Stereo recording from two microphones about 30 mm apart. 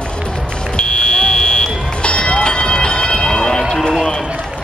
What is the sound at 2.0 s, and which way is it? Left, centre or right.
Run, left.